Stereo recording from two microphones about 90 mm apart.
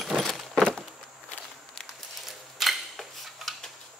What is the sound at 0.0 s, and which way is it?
Keys jangling, centre (ahead or behind).